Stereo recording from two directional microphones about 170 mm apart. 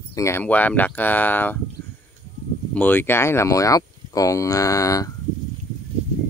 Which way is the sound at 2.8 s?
10° left (ahead or behind).